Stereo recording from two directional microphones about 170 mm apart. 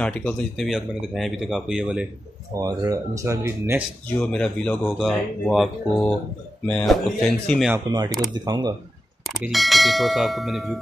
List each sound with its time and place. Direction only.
0.0 s speech: 5° left (ahead or behind)
2.6 s speech: 20° right (ahead or behind)
4.2 s speech: 5° left (ahead or behind)
7.7 s speech: 25° right (ahead or behind)
9.2 s speech: centre (ahead or behind)